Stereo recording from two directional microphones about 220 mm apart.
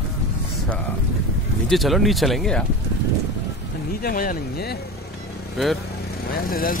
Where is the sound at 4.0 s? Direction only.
40° left (ahead or behind).